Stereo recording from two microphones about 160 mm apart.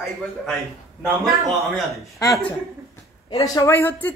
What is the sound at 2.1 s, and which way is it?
Speech, 20° left (ahead or behind).